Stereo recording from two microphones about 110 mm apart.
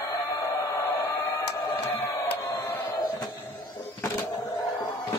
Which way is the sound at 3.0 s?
40° left (ahead or behind).